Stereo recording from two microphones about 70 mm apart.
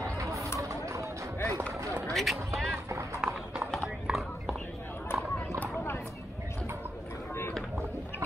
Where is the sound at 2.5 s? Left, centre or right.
Centre.